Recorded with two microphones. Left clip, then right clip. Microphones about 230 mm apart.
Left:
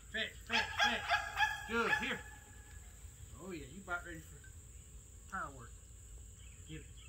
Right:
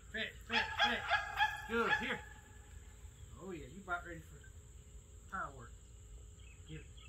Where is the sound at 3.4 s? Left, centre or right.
Centre.